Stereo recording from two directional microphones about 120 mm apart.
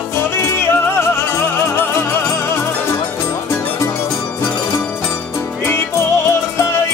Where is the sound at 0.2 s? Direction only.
20° left (ahead or behind).